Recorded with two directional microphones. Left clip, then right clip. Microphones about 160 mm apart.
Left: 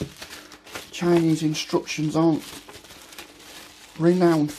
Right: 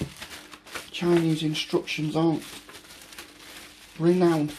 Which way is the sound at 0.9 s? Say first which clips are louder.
Left 3 dB; 45° left (ahead or behind).